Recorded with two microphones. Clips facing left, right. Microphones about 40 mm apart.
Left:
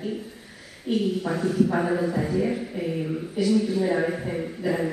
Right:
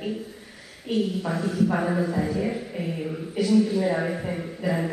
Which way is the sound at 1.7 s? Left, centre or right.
Centre.